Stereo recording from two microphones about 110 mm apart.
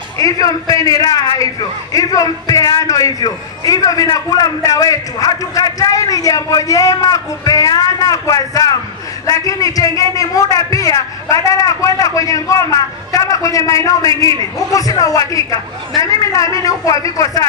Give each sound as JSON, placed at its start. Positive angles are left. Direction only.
{"t": 0.2, "sound": "a man's voice", "side_deg": 35}